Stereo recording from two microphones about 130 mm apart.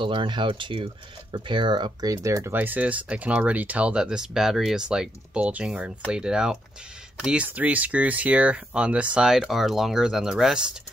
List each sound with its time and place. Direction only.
0.0 s speech: 40° right (ahead or behind); by 10.8 s 5° right (ahead or behind)